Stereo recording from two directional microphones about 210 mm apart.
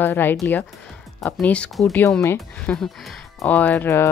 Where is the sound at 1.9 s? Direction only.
15° left (ahead or behind).